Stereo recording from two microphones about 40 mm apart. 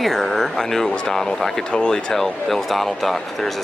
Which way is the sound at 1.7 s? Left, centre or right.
Left.